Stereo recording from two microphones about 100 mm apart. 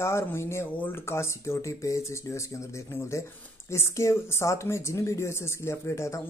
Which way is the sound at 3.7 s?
30° left (ahead or behind).